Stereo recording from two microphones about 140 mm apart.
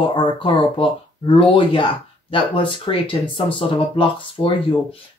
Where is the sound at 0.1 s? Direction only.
40° left (ahead or behind).